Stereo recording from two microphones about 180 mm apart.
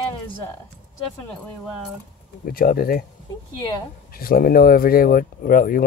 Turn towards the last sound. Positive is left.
turn(degrees=50)  # may be behind; listen again after turning